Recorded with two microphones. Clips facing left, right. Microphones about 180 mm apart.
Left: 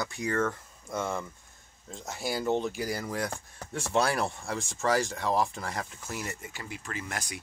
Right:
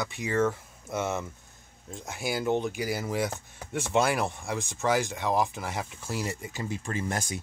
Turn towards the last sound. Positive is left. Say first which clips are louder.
# right 6 dB
turn(degrees=-25)  # may be behind; listen again after turning